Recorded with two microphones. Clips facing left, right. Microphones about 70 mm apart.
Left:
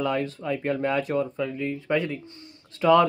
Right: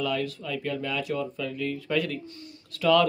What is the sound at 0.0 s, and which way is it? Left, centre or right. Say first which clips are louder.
Speech: left 3 dB; left.